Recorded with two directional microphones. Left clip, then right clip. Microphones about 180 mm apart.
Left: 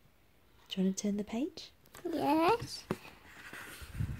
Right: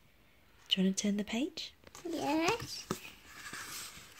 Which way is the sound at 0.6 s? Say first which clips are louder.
Right 4 dB; 5° left (ahead or behind).